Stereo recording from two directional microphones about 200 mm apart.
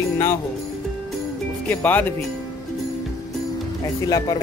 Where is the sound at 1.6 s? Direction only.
10° left (ahead or behind).